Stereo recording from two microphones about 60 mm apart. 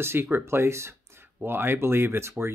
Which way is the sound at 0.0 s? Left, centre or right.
Right.